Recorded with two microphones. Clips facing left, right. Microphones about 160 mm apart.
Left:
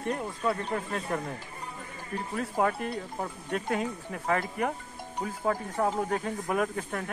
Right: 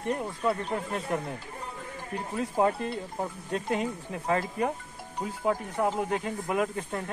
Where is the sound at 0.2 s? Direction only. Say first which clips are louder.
Right 1 dB; 5° right (ahead or behind).